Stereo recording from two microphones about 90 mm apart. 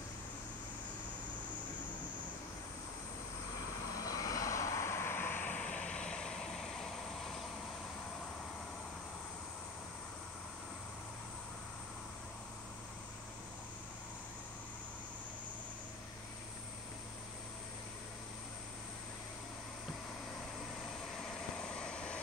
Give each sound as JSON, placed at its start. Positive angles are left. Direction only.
{"t": 3.9, "sound": "vehicle", "side_deg": 40}
{"t": 21.4, "sound": "vehicle", "side_deg": 10}